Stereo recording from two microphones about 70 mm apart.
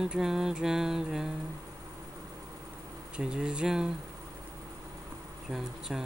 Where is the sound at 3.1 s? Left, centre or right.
Centre.